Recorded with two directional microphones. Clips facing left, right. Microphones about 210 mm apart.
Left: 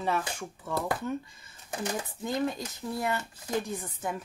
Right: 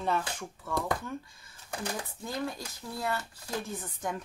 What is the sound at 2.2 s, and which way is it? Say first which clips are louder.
Speech: left 6 dB; 20° left (ahead or behind).